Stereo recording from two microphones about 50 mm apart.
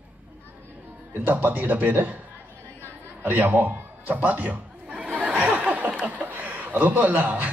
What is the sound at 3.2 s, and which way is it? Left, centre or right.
Speech, right.